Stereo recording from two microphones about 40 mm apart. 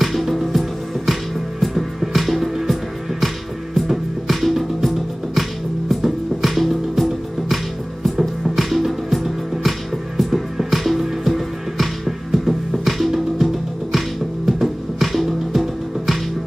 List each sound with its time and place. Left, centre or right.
0.0 s music: centre